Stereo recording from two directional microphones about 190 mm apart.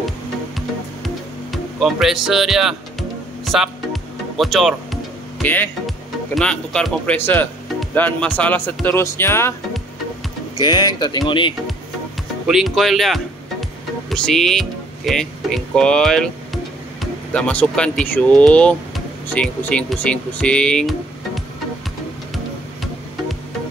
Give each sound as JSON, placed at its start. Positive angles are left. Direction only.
{"t": 0.6, "sound": "music", "side_deg": 0}
{"t": 5.4, "sound": "speech", "side_deg": 10}
{"t": 10.6, "sound": "speech", "side_deg": 20}
{"t": 12.4, "sound": "speech", "side_deg": 0}